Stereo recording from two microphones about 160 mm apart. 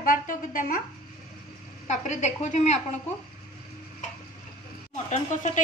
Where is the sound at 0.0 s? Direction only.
60° left (ahead or behind).